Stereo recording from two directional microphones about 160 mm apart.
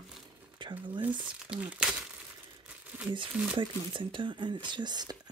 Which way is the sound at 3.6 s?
30° right (ahead or behind).